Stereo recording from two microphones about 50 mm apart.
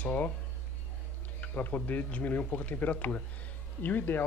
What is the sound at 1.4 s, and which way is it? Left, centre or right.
Speech, left.